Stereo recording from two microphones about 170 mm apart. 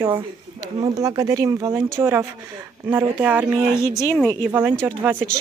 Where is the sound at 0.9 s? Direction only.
20° right (ahead or behind).